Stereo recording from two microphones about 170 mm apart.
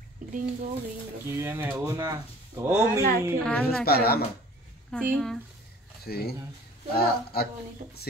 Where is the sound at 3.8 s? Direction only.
65° left (ahead or behind).